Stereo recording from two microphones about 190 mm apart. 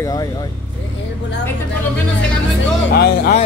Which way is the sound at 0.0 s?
20° left (ahead or behind).